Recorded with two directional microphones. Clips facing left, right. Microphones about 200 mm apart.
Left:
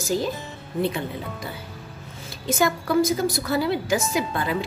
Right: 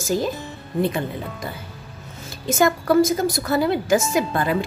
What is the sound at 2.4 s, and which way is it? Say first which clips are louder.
A woman's voice: right 4 dB; 50° right (ahead or behind).